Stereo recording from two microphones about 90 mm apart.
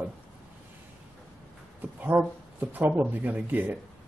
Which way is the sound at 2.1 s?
25° right (ahead or behind).